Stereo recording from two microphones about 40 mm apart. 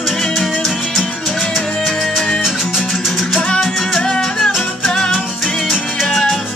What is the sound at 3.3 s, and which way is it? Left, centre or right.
Music, centre.